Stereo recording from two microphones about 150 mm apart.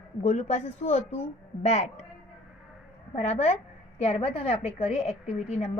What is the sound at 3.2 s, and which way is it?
A woman's voice, 45° left (ahead or behind).